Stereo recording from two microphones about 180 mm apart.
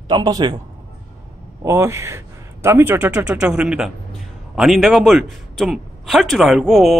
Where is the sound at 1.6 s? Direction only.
15° right (ahead or behind).